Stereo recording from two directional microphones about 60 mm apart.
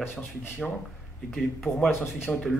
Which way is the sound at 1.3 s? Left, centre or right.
Centre.